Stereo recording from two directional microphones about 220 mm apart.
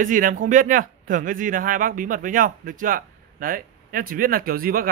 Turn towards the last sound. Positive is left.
turn(degrees=-40)  # may be behind; listen again after turning